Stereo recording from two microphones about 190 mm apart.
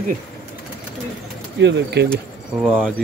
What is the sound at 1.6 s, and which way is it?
Speech, 65° right (ahead or behind).